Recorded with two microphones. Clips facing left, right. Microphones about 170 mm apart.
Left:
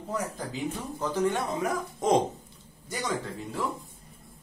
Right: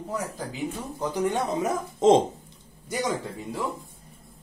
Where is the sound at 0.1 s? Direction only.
10° right (ahead or behind).